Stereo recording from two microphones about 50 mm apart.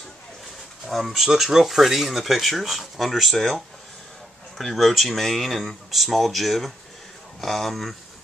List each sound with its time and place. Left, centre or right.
0.8 s speech: centre